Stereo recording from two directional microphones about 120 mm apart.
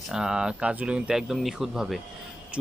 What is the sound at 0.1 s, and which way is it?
Speech, 5° right (ahead or behind).